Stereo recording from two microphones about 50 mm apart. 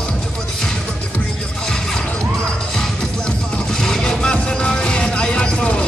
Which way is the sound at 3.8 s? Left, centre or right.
Centre.